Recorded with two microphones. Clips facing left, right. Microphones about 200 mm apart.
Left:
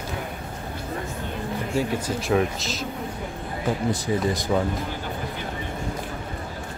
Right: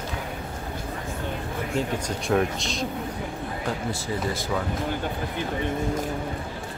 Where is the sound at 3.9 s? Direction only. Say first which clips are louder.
Left 4 dB; 15° left (ahead or behind).